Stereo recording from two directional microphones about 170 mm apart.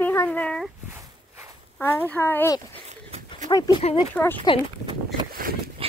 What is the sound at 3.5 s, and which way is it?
Speech, 25° left (ahead or behind).